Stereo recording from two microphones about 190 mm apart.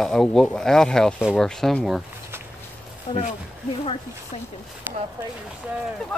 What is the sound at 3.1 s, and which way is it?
Speech, 30° left (ahead or behind).